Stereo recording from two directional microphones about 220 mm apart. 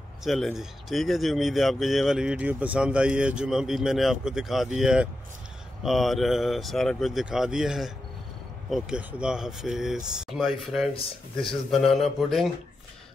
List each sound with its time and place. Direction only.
0.2 s speech: centre (ahead or behind)
10.9 s speech: 25° left (ahead or behind)
11.4 s speech: centre (ahead or behind)